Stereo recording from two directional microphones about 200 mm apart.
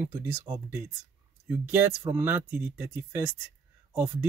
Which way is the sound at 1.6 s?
10° right (ahead or behind).